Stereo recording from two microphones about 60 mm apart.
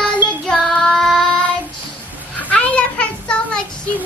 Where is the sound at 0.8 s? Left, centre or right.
Centre.